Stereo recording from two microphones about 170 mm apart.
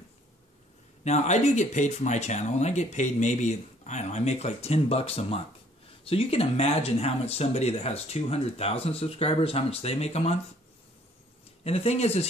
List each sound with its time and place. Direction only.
1.0 s speech: 40° left (ahead or behind)
11.6 s speech: 35° left (ahead or behind)